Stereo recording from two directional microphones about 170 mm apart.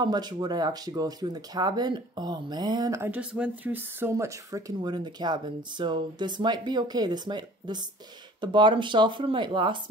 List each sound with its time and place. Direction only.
0.0 s speech: 25° right (ahead or behind)